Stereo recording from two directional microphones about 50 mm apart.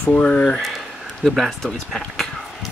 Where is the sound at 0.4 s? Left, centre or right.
Centre.